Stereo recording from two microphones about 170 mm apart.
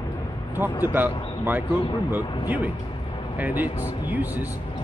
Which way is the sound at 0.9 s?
10° right (ahead or behind).